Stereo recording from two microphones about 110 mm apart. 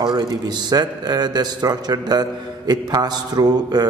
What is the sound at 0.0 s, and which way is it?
A man's voice, 40° right (ahead or behind).